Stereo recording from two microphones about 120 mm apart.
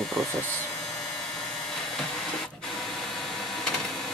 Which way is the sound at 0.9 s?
5° left (ahead or behind).